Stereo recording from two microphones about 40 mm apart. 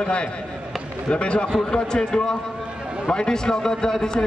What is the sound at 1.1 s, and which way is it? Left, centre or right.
A man's voice, left.